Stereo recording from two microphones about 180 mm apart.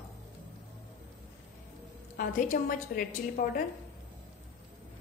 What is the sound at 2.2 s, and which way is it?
A woman's voice, 45° left (ahead or behind).